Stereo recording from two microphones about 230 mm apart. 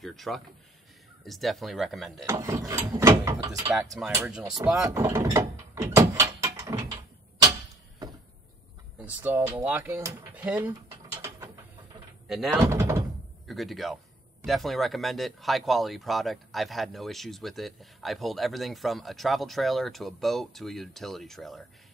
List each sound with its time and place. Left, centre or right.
0.0 s a sound: centre
1.2 s speech: centre
2.2 s mechanisms: centre
8.9 s speech: centre
12.3 s speech: centre
12.6 s mechanisms: centre
13.5 s speech: centre